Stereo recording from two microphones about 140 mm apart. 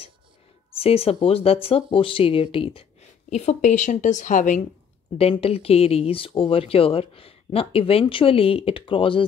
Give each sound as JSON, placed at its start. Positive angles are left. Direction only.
{"t": 0.7, "sound": "speech", "side_deg": 45}
{"t": 5.1, "sound": "speech", "side_deg": 45}